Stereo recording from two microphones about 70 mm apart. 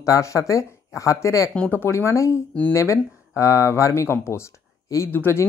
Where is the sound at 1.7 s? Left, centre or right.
Left.